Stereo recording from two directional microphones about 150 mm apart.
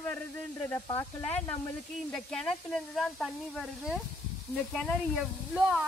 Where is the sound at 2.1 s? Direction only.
5° left (ahead or behind).